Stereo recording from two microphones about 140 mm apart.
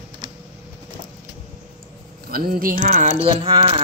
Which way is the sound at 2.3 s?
90° right.